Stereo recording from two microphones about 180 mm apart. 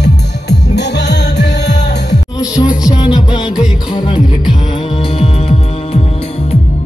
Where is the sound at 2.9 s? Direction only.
20° left (ahead or behind).